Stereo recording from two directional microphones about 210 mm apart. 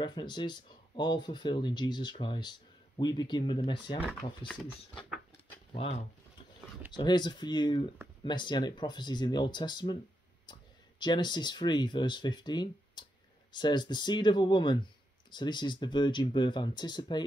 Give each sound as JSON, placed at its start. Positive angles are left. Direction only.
{"t": 0.0, "sound": "speech", "side_deg": 20}
{"t": 4.5, "sound": "speech", "side_deg": 5}
{"t": 5.7, "sound": "speech", "side_deg": 30}